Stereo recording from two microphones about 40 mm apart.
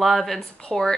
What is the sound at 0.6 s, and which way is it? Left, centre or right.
Speech, centre.